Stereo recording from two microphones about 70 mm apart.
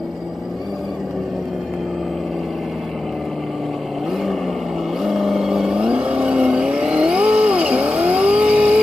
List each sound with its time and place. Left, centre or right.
5.0 s vehicle: centre